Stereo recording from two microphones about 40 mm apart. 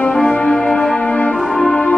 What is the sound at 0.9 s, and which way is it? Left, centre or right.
Music, left.